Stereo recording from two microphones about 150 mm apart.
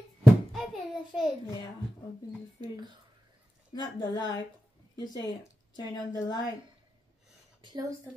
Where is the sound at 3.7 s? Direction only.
30° left (ahead or behind).